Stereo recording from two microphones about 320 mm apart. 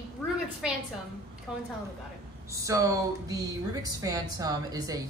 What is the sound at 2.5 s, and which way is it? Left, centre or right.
Speech, centre.